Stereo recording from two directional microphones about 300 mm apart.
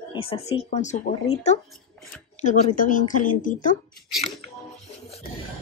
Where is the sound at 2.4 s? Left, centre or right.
Left.